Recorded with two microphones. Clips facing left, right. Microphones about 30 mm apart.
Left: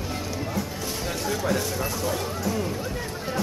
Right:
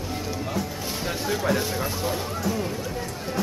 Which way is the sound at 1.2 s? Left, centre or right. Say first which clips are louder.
Right 2 dB; centre.